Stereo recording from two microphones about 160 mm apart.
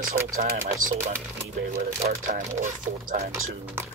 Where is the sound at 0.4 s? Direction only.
50° right (ahead or behind).